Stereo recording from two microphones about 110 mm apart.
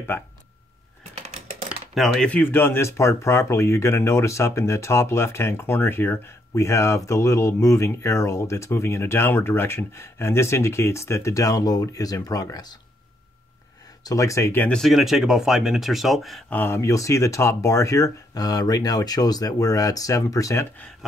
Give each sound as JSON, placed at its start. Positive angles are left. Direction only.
{"t": 2.0, "sound": "speech", "side_deg": 0}
{"t": 2.2, "sound": "speech", "side_deg": 15}
{"t": 14.0, "sound": "speech", "side_deg": 30}
{"t": 14.5, "sound": "speech", "side_deg": 15}
{"t": 14.8, "sound": "speech", "side_deg": 0}
{"t": 16.4, "sound": "speech", "side_deg": 20}